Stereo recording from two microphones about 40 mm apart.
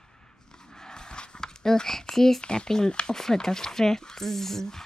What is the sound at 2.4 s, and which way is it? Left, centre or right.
Speech, left.